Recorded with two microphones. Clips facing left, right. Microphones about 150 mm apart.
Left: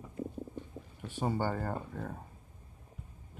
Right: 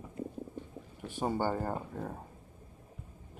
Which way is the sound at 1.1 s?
15° right (ahead or behind).